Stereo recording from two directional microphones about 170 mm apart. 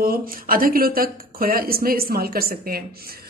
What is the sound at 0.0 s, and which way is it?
Speech, 60° right (ahead or behind).